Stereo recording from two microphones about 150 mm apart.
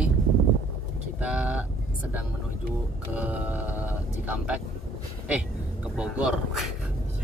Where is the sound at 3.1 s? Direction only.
10° right (ahead or behind).